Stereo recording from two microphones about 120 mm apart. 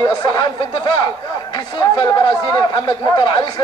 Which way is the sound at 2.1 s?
40° left (ahead or behind).